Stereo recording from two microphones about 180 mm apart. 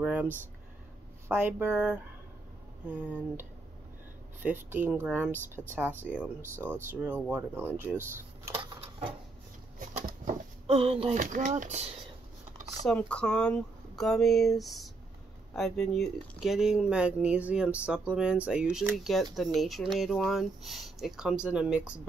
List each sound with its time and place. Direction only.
0.0 s speech: 10° right (ahead or behind)
1.3 s speech: 10° right (ahead or behind)
6.9 s speech: 10° right (ahead or behind)
8.5 s a sound: 30° right (ahead or behind)
10.2 s speech: 35° right (ahead or behind)
11.1 s speech: 45° right (ahead or behind)
12.8 s speech: 5° left (ahead or behind)